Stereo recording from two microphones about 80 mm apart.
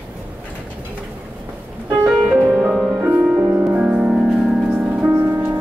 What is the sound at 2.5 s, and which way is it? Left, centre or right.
Music, centre.